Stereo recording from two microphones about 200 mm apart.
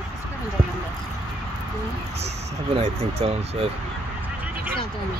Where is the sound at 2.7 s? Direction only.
30° right (ahead or behind).